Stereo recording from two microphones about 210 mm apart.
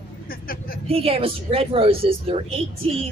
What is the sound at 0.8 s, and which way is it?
A woman's voice, 25° right (ahead or behind).